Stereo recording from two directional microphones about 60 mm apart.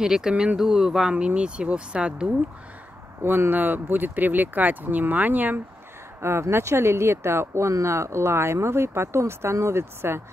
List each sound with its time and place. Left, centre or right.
0.0 s speech: centre
3.3 s speech: right
6.2 s speech: right